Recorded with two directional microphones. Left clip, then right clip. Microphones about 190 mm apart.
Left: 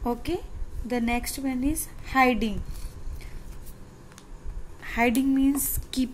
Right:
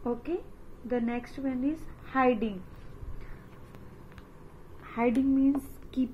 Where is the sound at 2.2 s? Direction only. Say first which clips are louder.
Left 4 dB; 25° left (ahead or behind).